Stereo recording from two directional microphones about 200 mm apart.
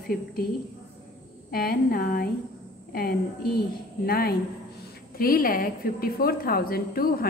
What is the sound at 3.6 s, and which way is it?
A woman's voice, 50° left (ahead or behind).